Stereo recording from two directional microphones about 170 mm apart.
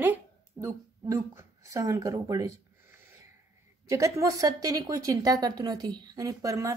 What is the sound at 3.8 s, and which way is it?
Speech, 20° right (ahead or behind).